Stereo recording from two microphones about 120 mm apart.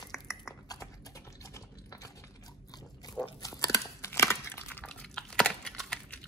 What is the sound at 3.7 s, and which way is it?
Crumpling, 25° left (ahead or behind).